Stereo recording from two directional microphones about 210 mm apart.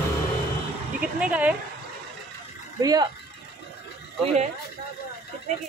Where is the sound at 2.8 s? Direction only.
15° right (ahead or behind).